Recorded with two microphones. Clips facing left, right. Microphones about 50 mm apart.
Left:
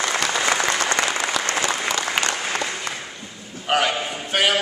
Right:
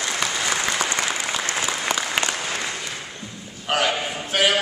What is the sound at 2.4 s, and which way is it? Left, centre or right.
Applause, centre.